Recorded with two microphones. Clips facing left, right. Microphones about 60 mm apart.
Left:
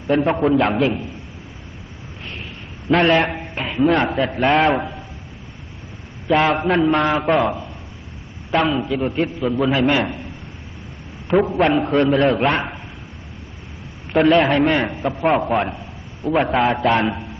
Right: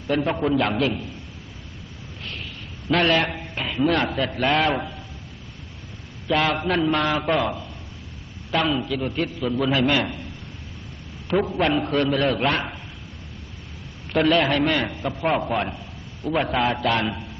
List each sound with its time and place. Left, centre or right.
0.0 s a man's voice: centre
3.0 s a man's voice: left
6.2 s a man's voice: left
14.2 s a man's voice: left